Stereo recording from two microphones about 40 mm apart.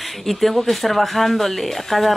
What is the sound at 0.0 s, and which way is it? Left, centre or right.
Speech, centre.